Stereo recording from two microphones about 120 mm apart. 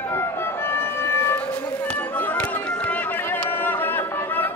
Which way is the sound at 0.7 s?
20° left (ahead or behind).